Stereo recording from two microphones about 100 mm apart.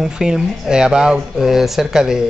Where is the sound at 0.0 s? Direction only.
5° right (ahead or behind).